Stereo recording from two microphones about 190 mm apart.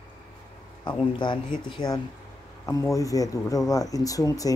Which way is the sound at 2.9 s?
20° left (ahead or behind).